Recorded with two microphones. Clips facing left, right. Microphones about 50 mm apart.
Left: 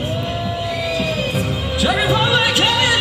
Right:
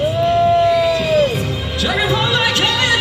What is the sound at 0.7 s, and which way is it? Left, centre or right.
Vehicle, right.